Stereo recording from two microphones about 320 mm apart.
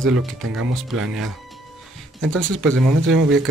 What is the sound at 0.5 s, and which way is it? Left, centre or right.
Speech, right.